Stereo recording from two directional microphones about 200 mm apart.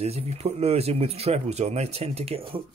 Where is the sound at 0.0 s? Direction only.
30° right (ahead or behind).